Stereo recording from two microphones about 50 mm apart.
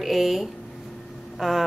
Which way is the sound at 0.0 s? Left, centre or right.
Centre.